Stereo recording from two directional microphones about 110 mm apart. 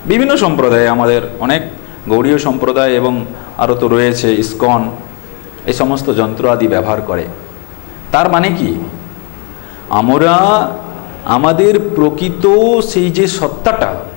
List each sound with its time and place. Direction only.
0.1 s a man's voice: 20° left (ahead or behind)
9.8 s a man's voice: 20° left (ahead or behind)